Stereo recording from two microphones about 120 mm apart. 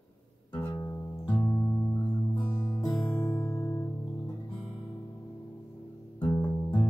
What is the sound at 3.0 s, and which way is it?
Music, 15° left (ahead or behind).